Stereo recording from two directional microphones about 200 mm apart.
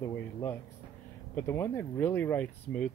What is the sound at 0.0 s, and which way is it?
Speech, 15° left (ahead or behind).